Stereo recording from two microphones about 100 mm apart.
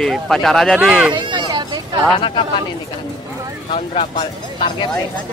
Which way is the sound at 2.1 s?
60° left (ahead or behind).